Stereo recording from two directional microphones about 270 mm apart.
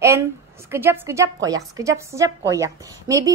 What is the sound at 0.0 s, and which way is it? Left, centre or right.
Speech, centre.